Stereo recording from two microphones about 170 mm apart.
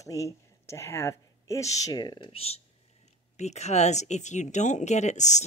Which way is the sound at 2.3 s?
35° left (ahead or behind).